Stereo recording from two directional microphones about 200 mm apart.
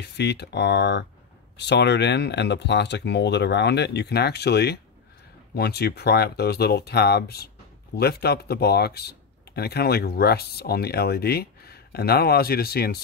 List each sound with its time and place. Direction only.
0.0 s speech: 55° left (ahead or behind)